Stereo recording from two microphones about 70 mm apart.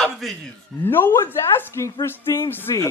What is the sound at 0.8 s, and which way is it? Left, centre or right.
A woman's voice, left.